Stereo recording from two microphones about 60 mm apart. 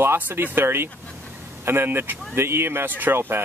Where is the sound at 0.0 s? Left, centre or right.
Right.